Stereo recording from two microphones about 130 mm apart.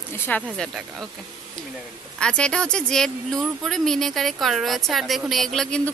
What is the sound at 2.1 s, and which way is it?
Speech, 5° left (ahead or behind).